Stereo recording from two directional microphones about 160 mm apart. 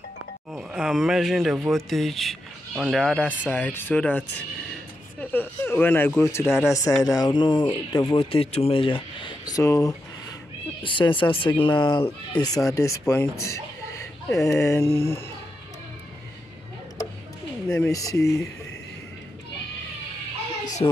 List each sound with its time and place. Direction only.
0.5 s speech: centre (ahead or behind)
5.2 s speech: 10° left (ahead or behind)
17.6 s speech: 15° left (ahead or behind)
20.8 s speech: 30° left (ahead or behind)